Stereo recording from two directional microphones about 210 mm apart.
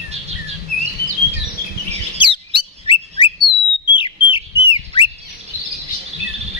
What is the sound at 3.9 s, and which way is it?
Whistle, 25° left (ahead or behind).